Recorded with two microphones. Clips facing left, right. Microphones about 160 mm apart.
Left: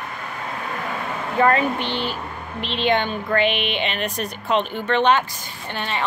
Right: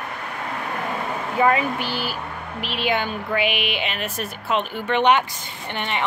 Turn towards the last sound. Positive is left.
turn(degrees=-20)  # may be behind; listen again after turning